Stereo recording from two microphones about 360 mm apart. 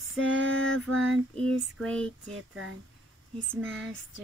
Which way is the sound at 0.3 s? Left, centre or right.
Right.